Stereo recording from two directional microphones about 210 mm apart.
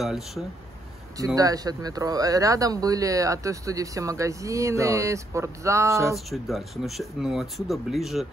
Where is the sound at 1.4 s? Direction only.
15° right (ahead or behind).